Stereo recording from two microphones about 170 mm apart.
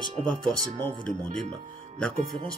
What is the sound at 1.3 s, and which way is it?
Speech, 40° right (ahead or behind).